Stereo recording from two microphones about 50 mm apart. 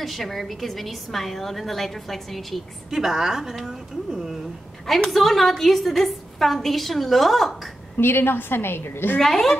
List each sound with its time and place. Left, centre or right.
0.0 s a woman's voice: centre
5.1 s a woman's voice: centre
8.0 s a woman's voice: left
9.2 s a woman's voice: centre